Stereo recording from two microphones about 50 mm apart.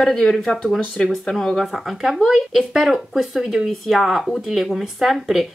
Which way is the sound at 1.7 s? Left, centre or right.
Centre.